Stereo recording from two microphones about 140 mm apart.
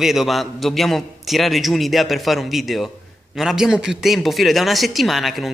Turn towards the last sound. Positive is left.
turn(degrees=0)  # may be behind; listen again after turning